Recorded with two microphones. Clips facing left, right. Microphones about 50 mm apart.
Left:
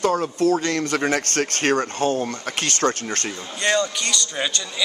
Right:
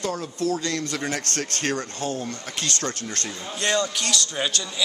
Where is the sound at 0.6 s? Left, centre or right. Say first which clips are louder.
Left 5 dB; left.